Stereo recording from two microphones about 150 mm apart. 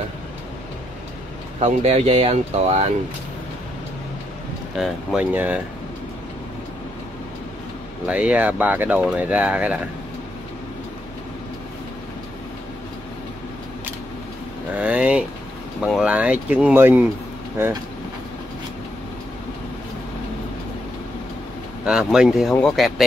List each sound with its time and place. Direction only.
1.6 s speech: 45° right (ahead or behind)
4.7 s speech: 5° right (ahead or behind)
8.1 s speech: 10° right (ahead or behind)
14.8 s speech: 10° right (ahead or behind)
21.8 s speech: 5° right (ahead or behind)